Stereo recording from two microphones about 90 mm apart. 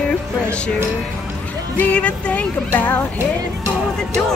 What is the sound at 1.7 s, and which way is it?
Speech, 15° left (ahead or behind).